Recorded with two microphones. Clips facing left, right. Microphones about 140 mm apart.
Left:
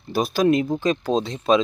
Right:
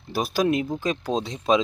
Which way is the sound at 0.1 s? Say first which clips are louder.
Left 4 dB; 10° right (ahead or behind).